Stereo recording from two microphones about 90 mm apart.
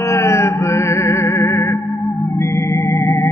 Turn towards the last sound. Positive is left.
turn(degrees=30)  # may be behind; listen again after turning